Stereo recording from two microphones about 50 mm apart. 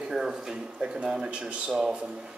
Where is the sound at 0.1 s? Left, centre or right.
Centre.